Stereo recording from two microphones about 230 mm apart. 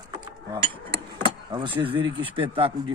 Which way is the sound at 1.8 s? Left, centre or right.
Right.